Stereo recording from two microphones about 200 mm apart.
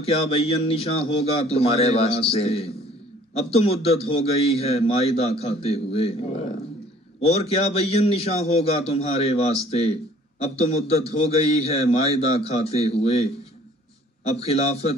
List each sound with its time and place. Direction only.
0.0 s a man's voice: 30° left (ahead or behind)